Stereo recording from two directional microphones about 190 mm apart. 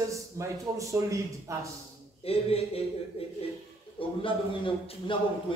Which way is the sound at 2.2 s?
30° left (ahead or behind).